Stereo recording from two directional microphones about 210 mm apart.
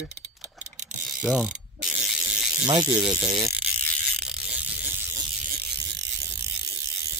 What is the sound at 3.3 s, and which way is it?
Speech, 15° right (ahead or behind).